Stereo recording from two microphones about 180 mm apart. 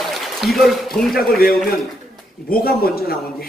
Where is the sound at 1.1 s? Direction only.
60° left (ahead or behind).